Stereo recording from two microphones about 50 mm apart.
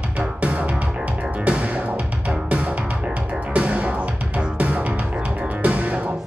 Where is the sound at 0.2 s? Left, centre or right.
Right.